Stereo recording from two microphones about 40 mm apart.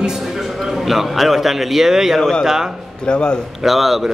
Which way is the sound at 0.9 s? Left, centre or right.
Centre.